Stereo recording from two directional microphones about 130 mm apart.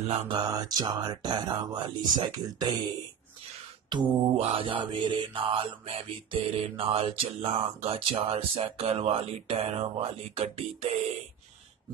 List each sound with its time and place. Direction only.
0.3 s speech: 30° right (ahead or behind)
3.9 s speech: 35° right (ahead or behind)
4.4 s mantra: 45° right (ahead or behind)